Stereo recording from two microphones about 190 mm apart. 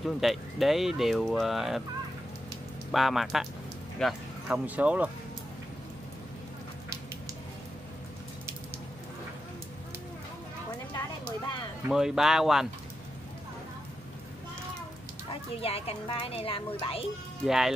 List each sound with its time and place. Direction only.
0.0 s speech: centre (ahead or behind)
2.9 s speech: centre (ahead or behind)
4.5 s speech: 10° right (ahead or behind)
11.9 s speech: centre (ahead or behind)
15.2 s a woman's voice: 30° left (ahead or behind)
17.5 s speech: centre (ahead or behind)